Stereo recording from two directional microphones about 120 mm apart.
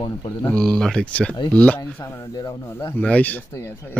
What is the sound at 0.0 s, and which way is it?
Speech, 35° left (ahead or behind).